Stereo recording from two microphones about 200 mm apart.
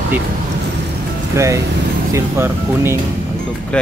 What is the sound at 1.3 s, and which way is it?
Speech, 15° right (ahead or behind).